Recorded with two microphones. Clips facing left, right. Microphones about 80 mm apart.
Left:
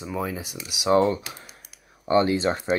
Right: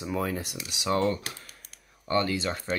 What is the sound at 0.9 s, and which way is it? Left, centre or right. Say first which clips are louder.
Speech: left 6 dB; centre.